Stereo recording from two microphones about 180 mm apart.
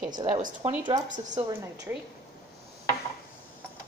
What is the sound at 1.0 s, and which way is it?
Speech, 45° right (ahead or behind).